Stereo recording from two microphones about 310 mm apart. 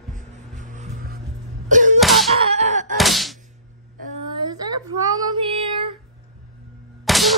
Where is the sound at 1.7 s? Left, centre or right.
Right.